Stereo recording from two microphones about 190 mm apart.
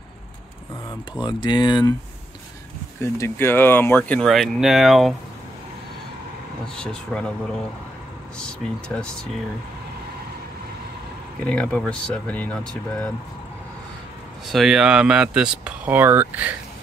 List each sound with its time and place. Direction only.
1.1 s speech: 25° left (ahead or behind)
3.0 s speech: 15° left (ahead or behind)
6.8 s speech: 5° left (ahead or behind)
8.4 s speech: 5° left (ahead or behind)
11.4 s speech: 5° left (ahead or behind)
14.5 s speech: centre (ahead or behind)